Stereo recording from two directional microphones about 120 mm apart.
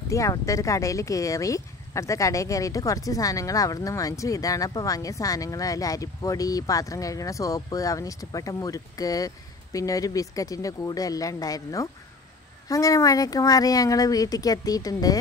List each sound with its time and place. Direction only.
0.1 s speech: 25° left (ahead or behind)